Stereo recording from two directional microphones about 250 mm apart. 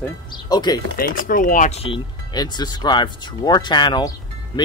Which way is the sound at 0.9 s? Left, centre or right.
Left.